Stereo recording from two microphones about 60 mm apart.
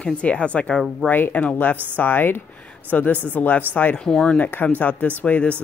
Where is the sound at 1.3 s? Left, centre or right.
Left.